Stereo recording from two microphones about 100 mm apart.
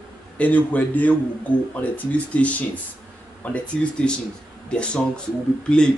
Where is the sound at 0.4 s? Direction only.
15° left (ahead or behind).